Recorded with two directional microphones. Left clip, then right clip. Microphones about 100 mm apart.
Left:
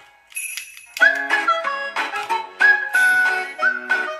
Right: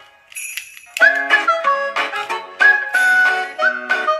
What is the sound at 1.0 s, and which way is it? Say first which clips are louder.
Music: right 3 dB; 25° right (ahead or behind).